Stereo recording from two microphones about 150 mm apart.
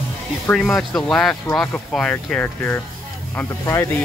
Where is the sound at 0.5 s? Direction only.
5° left (ahead or behind).